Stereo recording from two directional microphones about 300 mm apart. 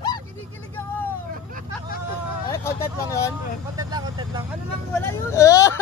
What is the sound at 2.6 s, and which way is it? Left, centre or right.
Vehicle, centre.